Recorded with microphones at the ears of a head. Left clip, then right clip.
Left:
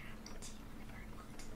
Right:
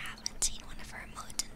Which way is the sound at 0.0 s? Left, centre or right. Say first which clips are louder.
Right 15 dB; right.